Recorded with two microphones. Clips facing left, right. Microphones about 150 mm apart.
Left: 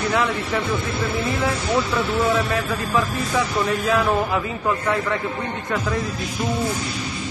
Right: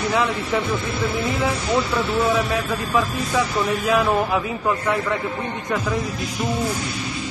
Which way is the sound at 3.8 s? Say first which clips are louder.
Right 2 dB; 20° right (ahead or behind).